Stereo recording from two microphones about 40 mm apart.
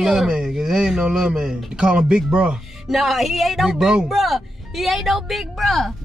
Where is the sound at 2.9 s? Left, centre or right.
Centre.